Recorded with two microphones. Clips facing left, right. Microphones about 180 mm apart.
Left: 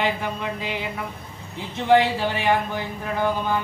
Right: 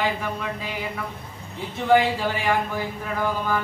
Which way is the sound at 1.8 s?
25° left (ahead or behind).